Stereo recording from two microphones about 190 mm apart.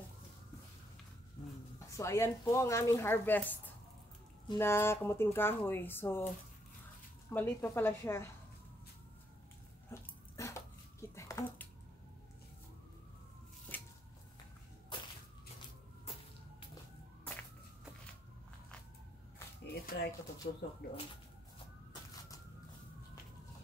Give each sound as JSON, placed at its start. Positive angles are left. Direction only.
{"t": 2.0, "sound": "speech", "side_deg": 15}
{"t": 4.6, "sound": "speech", "side_deg": 15}
{"t": 7.3, "sound": "speech", "side_deg": 10}
{"t": 9.8, "sound": "dog", "side_deg": 15}
{"t": 13.7, "sound": "a sound", "side_deg": 10}
{"t": 14.9, "sound": "whip", "side_deg": 25}
{"t": 17.2, "sound": "a sound", "side_deg": 10}
{"t": 19.9, "sound": "a sound", "side_deg": 60}
{"t": 20.4, "sound": "speech", "side_deg": 45}